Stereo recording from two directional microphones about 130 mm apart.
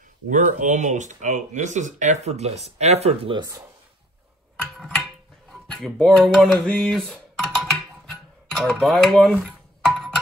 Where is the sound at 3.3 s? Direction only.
25° right (ahead or behind).